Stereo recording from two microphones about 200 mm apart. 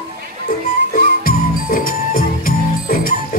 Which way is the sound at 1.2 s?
45° left (ahead or behind).